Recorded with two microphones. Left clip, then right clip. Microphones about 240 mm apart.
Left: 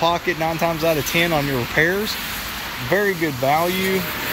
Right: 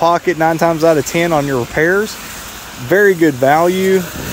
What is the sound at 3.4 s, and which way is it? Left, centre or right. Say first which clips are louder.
Speech: right 7 dB; right.